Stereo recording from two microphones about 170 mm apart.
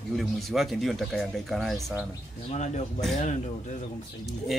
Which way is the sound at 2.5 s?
40° left (ahead or behind).